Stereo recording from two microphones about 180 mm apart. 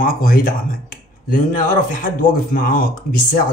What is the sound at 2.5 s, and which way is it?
Speech, 50° left (ahead or behind).